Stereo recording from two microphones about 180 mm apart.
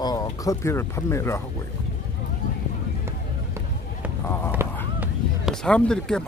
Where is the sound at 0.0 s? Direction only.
20° left (ahead or behind).